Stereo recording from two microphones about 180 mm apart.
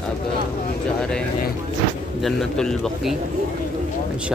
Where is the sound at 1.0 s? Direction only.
5° left (ahead or behind).